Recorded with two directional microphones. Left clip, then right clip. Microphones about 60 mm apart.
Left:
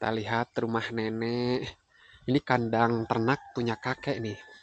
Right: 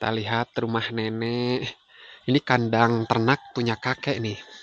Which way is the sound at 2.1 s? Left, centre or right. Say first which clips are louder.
Right 4 dB; right.